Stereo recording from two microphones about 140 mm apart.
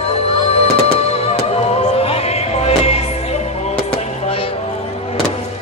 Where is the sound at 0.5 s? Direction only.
45° left (ahead or behind).